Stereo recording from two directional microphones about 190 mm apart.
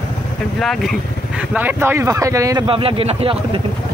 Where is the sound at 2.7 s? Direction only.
30° right (ahead or behind).